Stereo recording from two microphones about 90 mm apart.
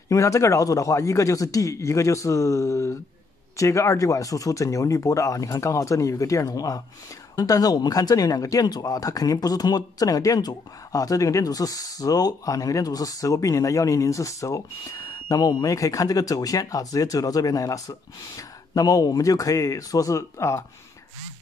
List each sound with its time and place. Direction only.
0.1 s speech: 35° left (ahead or behind)